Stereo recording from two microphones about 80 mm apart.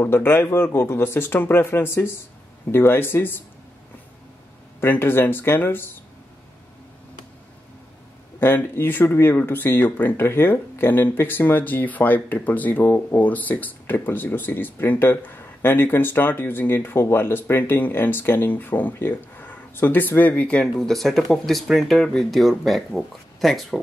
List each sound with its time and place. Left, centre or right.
0.0 s speech: left
4.7 s speech: left
8.4 s speech: left; by 23.8 s centre